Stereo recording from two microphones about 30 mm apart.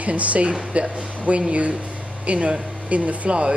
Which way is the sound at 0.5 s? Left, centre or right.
Right.